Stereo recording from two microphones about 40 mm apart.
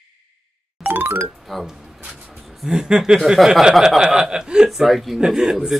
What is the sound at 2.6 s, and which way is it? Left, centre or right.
A man's voice, centre.